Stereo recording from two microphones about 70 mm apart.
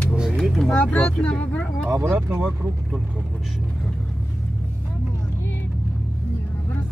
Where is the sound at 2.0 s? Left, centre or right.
Right.